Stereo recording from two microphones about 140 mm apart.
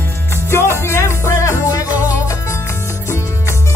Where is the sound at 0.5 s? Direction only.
20° left (ahead or behind).